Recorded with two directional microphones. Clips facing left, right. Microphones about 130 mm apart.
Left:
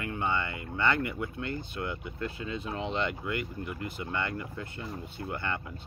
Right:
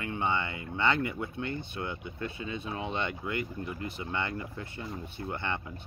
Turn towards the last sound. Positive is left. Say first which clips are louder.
# even
turn(degrees=-25)  # may be behind; listen again after turning